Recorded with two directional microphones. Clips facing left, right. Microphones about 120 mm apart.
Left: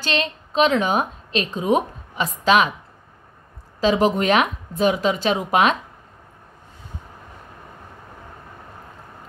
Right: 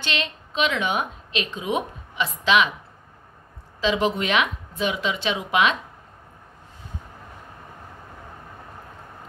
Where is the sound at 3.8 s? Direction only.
40° left (ahead or behind).